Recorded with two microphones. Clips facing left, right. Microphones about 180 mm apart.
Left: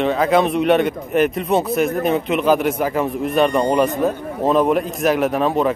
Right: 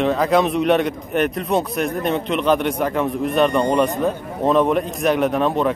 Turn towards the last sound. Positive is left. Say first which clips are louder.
# left 1 dB
turn(degrees=0)  # may be behind; listen again after turning